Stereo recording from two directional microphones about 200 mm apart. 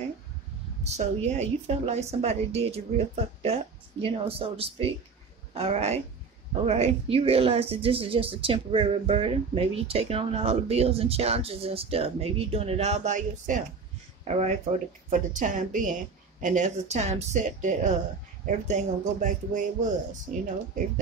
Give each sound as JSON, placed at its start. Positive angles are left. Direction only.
{"t": 0.8, "sound": "a woman's voice", "side_deg": -35}